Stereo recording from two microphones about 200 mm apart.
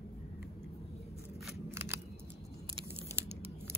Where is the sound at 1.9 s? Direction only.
10° right (ahead or behind).